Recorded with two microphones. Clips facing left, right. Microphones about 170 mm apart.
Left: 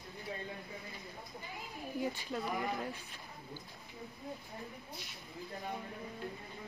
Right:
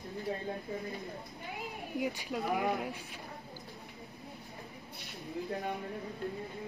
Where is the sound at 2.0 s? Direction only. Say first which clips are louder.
Right 2 dB; 15° right (ahead or behind).